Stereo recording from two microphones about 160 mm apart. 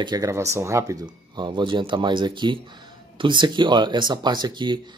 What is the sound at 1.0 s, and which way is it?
Speech, 30° right (ahead or behind).